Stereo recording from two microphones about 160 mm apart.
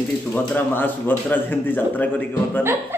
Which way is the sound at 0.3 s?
10° left (ahead or behind).